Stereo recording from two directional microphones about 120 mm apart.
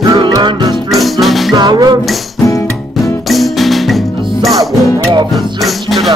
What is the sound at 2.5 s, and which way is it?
Music, 25° left (ahead or behind).